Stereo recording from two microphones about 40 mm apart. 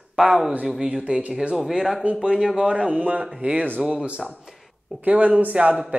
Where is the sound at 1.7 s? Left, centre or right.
Centre.